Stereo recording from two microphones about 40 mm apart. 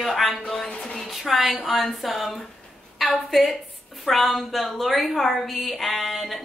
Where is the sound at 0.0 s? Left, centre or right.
Centre.